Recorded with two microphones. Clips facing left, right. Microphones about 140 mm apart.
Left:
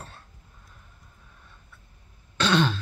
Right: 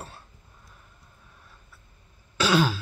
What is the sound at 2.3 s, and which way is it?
Throat clearing, 5° right (ahead or behind).